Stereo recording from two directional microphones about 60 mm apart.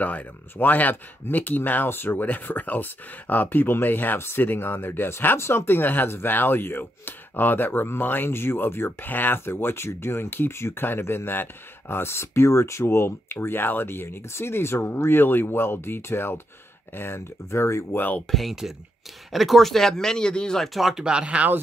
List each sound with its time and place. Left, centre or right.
0.0 s speech: left
17.9 s speech: left
18.3 s speech: centre
21.0 s speech: centre